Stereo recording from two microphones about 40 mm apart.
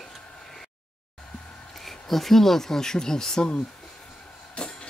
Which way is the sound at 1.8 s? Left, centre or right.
Centre.